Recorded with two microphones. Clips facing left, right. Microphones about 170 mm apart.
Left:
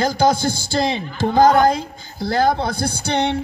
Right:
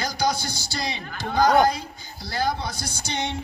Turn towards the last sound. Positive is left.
turn(degrees=60)  # may be behind; listen again after turning